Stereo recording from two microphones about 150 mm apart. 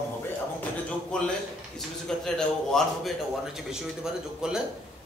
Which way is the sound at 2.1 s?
5° left (ahead or behind).